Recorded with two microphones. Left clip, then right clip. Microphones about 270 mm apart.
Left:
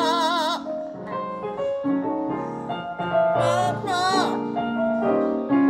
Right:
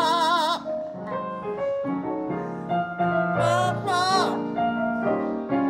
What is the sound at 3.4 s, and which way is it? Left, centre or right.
Music, centre.